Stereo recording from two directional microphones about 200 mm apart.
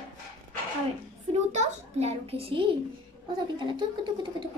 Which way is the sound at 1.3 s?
30° right (ahead or behind).